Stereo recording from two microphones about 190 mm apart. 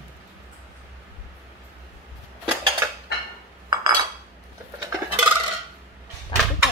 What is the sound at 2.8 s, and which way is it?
Dishes, 10° right (ahead or behind).